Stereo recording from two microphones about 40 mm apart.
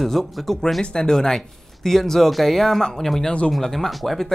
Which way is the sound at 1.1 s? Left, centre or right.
Centre.